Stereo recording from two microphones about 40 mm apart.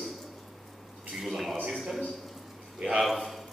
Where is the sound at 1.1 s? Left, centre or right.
Centre.